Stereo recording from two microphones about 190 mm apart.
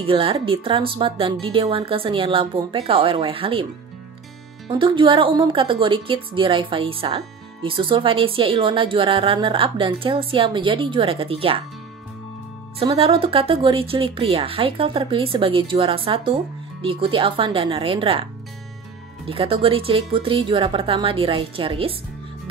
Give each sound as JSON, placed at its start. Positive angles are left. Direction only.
{"t": 0.0, "sound": "a woman's voice", "side_deg": -30}
{"t": 4.6, "sound": "a woman's voice", "side_deg": -25}
{"t": 12.7, "sound": "a woman's voice", "side_deg": -30}
{"t": 19.2, "sound": "a woman's voice", "side_deg": -30}